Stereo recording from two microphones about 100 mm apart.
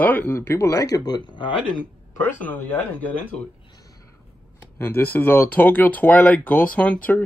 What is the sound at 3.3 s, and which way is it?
Speech, 90° left.